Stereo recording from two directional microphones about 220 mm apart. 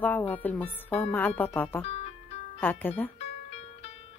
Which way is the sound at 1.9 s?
30° left (ahead or behind).